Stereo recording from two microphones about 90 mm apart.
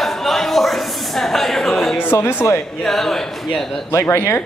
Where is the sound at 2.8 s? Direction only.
5° left (ahead or behind).